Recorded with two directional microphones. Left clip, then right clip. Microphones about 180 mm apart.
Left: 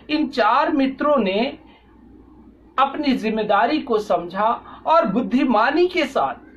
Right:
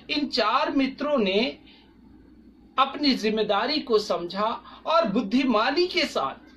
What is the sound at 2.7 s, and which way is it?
Speech, 10° right (ahead or behind).